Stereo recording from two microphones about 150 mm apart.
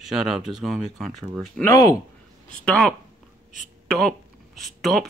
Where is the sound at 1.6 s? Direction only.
20° left (ahead or behind).